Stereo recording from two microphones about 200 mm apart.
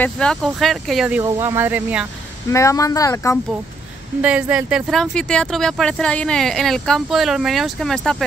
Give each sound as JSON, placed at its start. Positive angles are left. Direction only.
{"t": 0.0, "sound": "speech", "side_deg": 5}
{"t": 1.2, "sound": "speech", "side_deg": -15}
{"t": 2.5, "sound": "speech", "side_deg": 15}
{"t": 4.2, "sound": "speech", "side_deg": -5}